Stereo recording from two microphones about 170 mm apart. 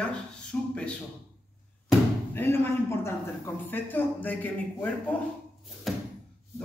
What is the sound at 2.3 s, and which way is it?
A man's voice, 15° left (ahead or behind).